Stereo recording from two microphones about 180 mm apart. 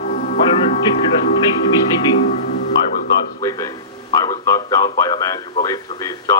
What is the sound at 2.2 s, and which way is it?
Music, 45° left (ahead or behind).